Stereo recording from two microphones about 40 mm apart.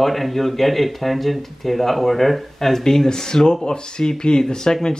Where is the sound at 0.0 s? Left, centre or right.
Centre.